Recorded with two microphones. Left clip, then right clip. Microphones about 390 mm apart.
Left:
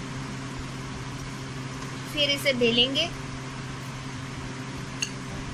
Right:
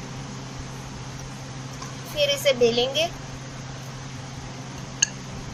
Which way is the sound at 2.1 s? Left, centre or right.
Centre.